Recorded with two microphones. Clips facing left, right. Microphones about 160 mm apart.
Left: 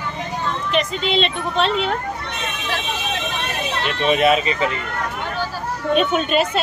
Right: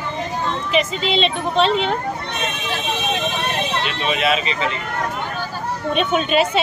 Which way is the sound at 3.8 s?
50° left (ahead or behind).